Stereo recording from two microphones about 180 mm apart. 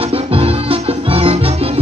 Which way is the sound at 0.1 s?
30° right (ahead or behind).